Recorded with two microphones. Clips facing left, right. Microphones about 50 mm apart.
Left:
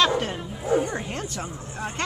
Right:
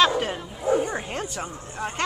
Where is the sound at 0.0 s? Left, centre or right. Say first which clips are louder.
Right 1 dB; centre.